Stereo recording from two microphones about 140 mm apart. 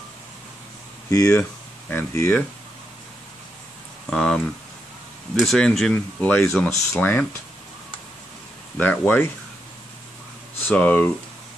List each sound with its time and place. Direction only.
1.1 s speech: 25° left (ahead or behind)
4.1 s speech: 5° left (ahead or behind)
8.7 s speech: 10° left (ahead or behind)
10.6 s speech: 10° left (ahead or behind)